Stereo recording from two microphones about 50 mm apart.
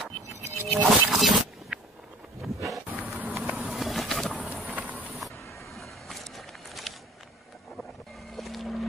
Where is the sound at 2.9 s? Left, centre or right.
Right.